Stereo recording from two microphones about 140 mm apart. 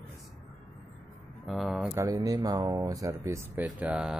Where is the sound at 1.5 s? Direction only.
Centre (ahead or behind).